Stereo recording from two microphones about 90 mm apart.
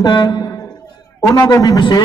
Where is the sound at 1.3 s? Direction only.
35° left (ahead or behind).